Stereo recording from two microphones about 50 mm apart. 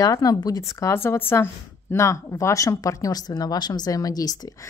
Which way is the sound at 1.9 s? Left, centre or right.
Left.